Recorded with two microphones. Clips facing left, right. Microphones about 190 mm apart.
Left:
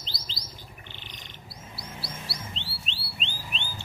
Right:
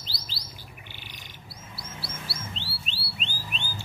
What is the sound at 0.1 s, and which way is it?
Bird, 20° left (ahead or behind).